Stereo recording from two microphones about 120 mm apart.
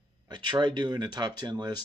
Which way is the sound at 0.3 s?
40° right (ahead or behind).